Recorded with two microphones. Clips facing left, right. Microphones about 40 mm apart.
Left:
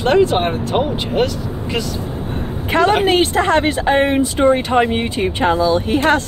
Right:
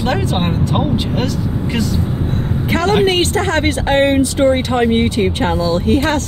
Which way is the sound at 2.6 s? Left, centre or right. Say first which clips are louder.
Even; left.